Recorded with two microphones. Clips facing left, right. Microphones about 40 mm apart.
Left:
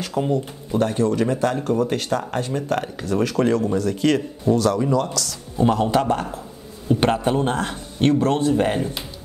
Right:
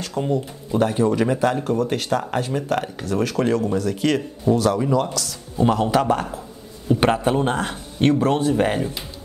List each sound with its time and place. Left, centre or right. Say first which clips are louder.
0.0 s speech: left 1 dB; centre